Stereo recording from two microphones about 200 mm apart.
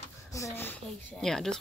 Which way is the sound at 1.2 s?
Centre (ahead or behind).